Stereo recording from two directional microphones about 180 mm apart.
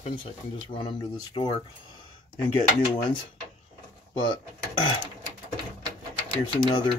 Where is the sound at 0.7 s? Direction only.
25° left (ahead or behind).